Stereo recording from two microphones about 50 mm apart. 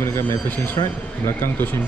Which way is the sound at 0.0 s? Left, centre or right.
Left.